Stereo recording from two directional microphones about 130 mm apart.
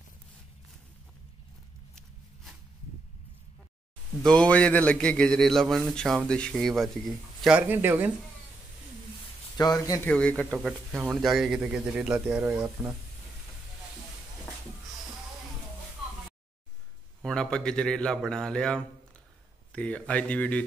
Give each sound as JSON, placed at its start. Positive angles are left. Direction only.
{"t": 4.2, "sound": "a man's voice", "side_deg": 5}
{"t": 7.6, "sound": "a man's voice", "side_deg": -15}
{"t": 9.6, "sound": "speech", "side_deg": 25}
{"t": 10.0, "sound": "a man's voice", "side_deg": 10}
{"t": 17.2, "sound": "a man's voice", "side_deg": 5}